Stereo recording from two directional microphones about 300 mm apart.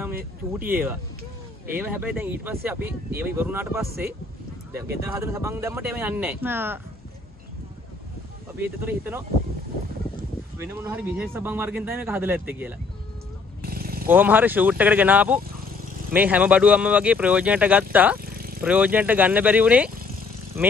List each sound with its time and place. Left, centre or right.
0.6 s speech: centre
5.0 s speech: centre
8.6 s speech: centre
10.6 s speech: centre
13.6 s a sound: right
14.0 s speech: centre
18.3 s vehicle: right
18.6 s speech: centre